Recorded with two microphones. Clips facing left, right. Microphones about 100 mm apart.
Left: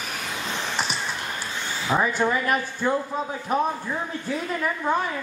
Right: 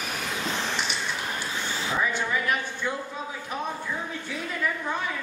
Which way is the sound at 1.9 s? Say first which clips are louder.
Left 6 dB; 40° left (ahead or behind).